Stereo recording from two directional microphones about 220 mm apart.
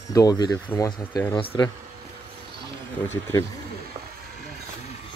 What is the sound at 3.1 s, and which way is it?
Speech, 15° left (ahead or behind).